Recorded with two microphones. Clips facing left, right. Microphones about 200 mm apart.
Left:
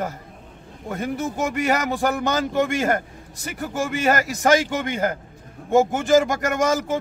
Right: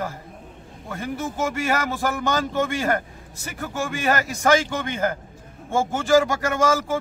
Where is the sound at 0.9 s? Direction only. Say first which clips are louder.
Left 3 dB; 15° left (ahead or behind).